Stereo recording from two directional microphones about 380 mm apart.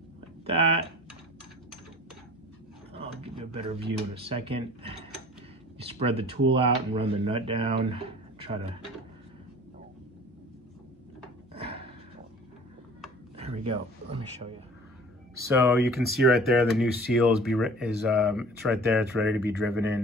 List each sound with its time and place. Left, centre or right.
0.5 s speech: centre
3.3 s speech: centre
11.5 s a sound: centre
13.4 s speech: centre